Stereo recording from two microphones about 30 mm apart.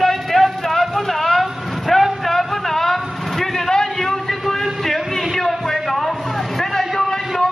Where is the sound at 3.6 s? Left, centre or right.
Centre.